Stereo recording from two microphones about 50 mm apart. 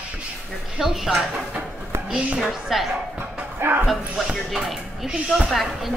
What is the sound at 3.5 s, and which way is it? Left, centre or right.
Speech, right.